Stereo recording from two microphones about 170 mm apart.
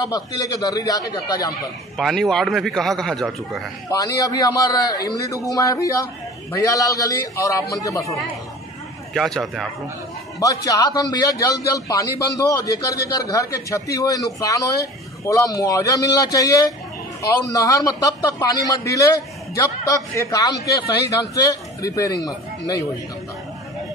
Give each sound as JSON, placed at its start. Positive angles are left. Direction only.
{"t": 0.4, "sound": "a man's voice", "side_deg": 20}
{"t": 2.0, "sound": "a man's voice", "side_deg": 0}
{"t": 3.9, "sound": "a man's voice", "side_deg": 20}
{"t": 9.1, "sound": "a man's voice", "side_deg": 0}
{"t": 10.4, "sound": "a man's voice", "side_deg": 20}